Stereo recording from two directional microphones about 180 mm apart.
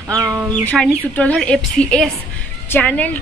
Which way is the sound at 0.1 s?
20° right (ahead or behind).